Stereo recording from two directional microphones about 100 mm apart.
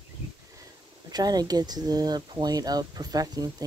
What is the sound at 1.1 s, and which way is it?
Speech, 40° right (ahead or behind).